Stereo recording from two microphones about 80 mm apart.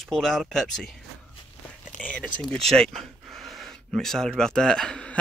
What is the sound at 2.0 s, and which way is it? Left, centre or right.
Speech, centre.